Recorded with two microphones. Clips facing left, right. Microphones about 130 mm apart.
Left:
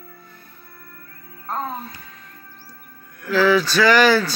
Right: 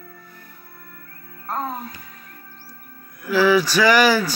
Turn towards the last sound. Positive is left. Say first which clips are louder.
# left 1 dB
turn(degrees=-10)  # may be behind; listen again after turning